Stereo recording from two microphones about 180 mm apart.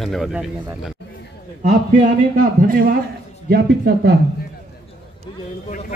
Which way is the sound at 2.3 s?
50° right (ahead or behind).